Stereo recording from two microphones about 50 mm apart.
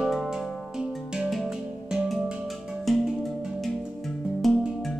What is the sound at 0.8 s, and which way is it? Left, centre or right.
Music, centre.